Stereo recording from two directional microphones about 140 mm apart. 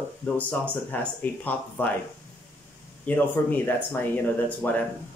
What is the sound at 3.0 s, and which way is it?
Speech, 10° left (ahead or behind).